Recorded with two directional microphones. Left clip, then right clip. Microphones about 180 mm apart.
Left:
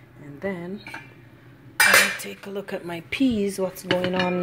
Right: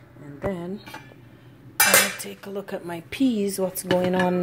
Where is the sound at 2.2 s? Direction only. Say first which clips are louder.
Left 1 dB; centre (ahead or behind).